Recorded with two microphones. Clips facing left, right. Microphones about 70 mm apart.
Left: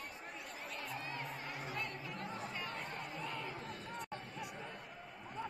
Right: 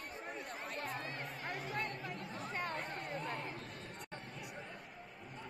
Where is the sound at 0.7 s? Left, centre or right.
Right.